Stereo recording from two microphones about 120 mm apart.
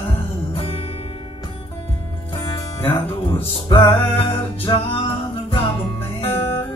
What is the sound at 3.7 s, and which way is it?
Music, 50° left (ahead or behind).